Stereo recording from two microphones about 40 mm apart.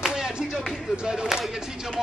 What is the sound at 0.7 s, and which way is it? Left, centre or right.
Speech, centre.